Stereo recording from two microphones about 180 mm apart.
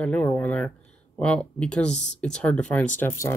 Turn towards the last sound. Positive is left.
turn(degrees=15)  # may be behind; listen again after turning